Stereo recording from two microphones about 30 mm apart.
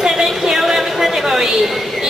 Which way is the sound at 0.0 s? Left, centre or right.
Centre.